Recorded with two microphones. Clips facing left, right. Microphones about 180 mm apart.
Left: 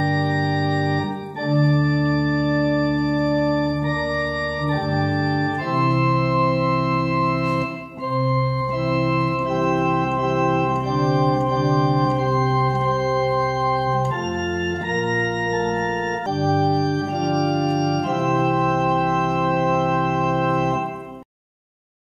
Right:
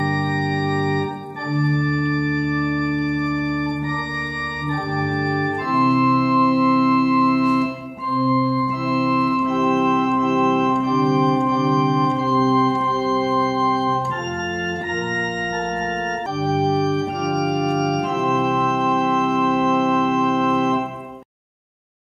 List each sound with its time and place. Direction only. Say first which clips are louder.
0.0 s organ: left 1 dB; 30° left (ahead or behind)
1.6 s music: left 1 dB; 35° left (ahead or behind)
4.6 s organ: even; 30° left (ahead or behind)
6.3 s music: right 3 dB; 15° left (ahead or behind)
6.6 s music: right 5 dB; 40° left (ahead or behind)
9.0 s organ: right 2 dB; 35° left (ahead or behind)
16.3 s organ: even; 30° left (ahead or behind)